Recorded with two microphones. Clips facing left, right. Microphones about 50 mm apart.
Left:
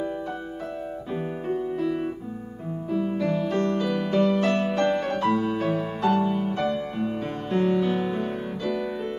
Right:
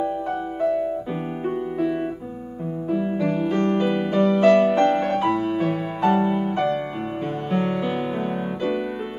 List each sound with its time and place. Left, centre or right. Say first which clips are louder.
1.5 s piano: right 1 dB; right
2.9 s music: right 2 dB; right
7.5 s music: left 2 dB; centre